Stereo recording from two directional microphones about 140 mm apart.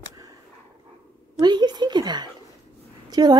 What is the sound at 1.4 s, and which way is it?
A woman's voice, 30° right (ahead or behind).